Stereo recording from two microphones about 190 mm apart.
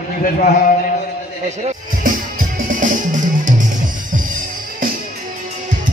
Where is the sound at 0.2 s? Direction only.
45° left (ahead or behind).